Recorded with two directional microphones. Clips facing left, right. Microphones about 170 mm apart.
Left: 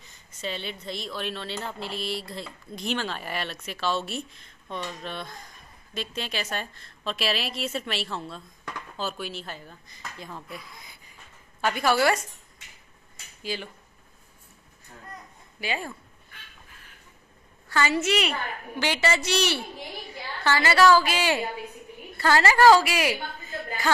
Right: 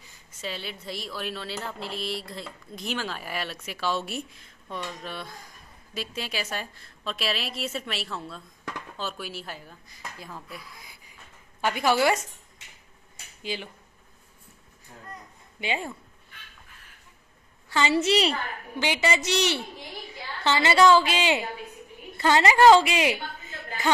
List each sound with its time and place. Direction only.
0.4 s speech: 5° right (ahead or behind)
13.4 s speech: 15° right (ahead or behind)
15.6 s a woman's voice: 20° right (ahead or behind)
17.6 s a woman's voice: 20° right (ahead or behind)
17.9 s a woman's voice: 35° right (ahead or behind)
18.8 s a woman's voice: 15° right (ahead or behind)